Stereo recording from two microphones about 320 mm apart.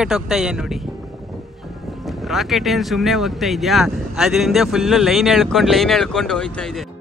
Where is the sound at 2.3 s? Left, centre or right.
Centre.